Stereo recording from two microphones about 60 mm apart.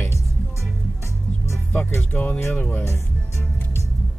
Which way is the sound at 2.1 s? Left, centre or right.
Left.